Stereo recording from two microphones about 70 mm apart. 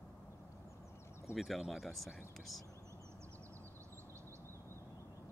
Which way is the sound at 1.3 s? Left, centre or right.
Centre.